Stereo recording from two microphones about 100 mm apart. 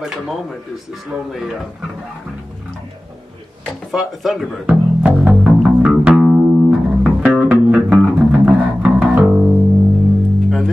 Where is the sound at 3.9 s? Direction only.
Centre (ahead or behind).